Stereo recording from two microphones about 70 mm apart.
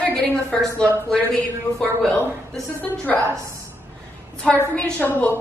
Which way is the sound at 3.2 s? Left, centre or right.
Right.